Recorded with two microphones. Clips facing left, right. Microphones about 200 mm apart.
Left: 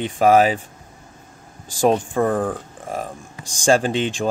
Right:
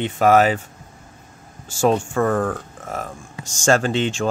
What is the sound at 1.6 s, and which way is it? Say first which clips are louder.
Speech: left 1 dB; 15° left (ahead or behind).